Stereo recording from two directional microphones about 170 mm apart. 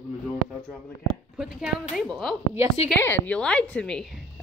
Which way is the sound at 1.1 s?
Centre (ahead or behind).